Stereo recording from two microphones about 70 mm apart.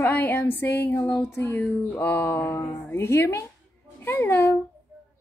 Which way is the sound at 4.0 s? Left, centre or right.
Left.